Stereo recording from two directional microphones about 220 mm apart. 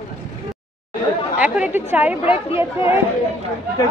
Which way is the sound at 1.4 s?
5° right (ahead or behind).